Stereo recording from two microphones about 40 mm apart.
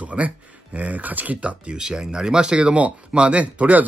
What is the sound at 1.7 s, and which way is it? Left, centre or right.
Speech, centre.